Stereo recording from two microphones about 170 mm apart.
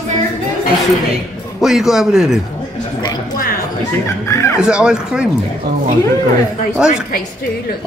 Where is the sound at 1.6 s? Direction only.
Centre (ahead or behind).